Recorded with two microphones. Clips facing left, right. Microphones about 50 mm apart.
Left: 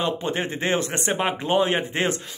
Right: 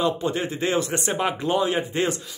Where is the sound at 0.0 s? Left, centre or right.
Left.